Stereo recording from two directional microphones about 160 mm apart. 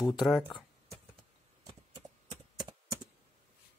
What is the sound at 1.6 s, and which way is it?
Vehicle, 25° right (ahead or behind).